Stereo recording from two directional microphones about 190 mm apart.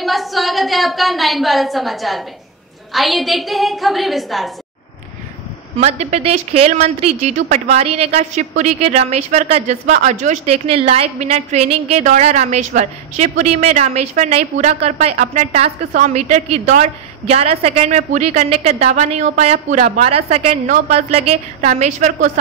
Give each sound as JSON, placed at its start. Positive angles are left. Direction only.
{"t": 0.0, "sound": "a woman's voice", "side_deg": 0}
{"t": 5.8, "sound": "a woman's voice", "side_deg": -35}